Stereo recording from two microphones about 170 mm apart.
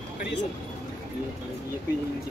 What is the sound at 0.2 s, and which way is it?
Speech, 90° left.